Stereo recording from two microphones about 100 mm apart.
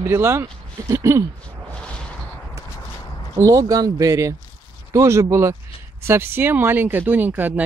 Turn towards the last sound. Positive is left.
turn(degrees=-20)  # may be behind; listen again after turning